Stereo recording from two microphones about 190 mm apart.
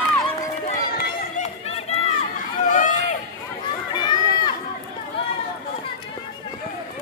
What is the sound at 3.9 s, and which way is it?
Run, 25° left (ahead or behind).